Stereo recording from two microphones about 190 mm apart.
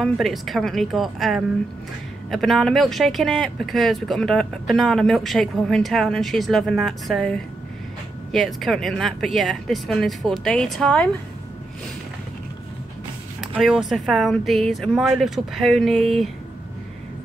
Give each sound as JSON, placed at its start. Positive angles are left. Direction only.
{"t": 0.0, "sound": "speech", "side_deg": 0}
{"t": 13.6, "sound": "speech", "side_deg": -5}